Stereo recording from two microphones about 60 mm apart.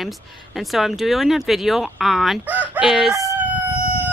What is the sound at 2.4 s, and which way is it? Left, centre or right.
Speech, right.